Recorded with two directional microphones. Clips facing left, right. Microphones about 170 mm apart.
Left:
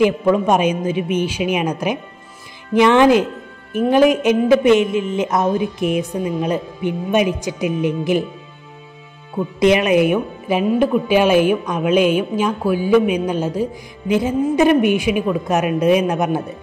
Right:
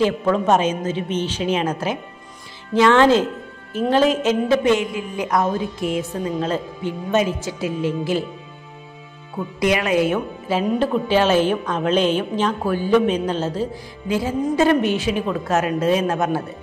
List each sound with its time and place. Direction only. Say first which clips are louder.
0.0 s a woman's voice: left 3 dB; 15° left (ahead or behind)
9.6 s a woman's voice: left 5 dB; 20° left (ahead or behind)
10.6 s a woman's voice: left 4 dB; 5° left (ahead or behind)